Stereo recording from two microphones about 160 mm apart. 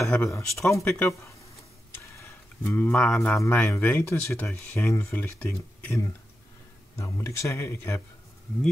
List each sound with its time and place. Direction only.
0.1 s speech: 10° left (ahead or behind)
7.0 s speech: 20° left (ahead or behind)